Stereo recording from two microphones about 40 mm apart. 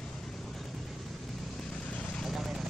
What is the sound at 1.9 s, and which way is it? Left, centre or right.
Vehicle, left.